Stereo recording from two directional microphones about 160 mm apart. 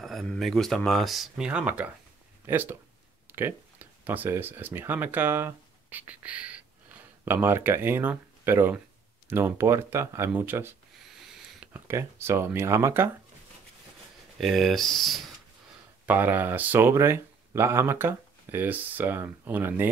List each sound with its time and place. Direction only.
0.0 s speech: centre (ahead or behind)
3.3 s a sound: 15° right (ahead or behind)
4.0 s speech: 10° right (ahead or behind)
14.4 s speech: centre (ahead or behind)
16.1 s speech: 10° right (ahead or behind)